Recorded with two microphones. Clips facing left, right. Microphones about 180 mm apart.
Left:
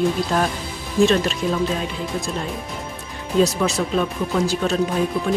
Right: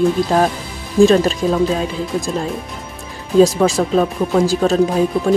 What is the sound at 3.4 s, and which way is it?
Speech, 40° right (ahead or behind).